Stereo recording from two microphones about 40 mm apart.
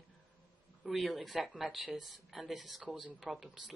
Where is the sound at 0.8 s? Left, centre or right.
Centre.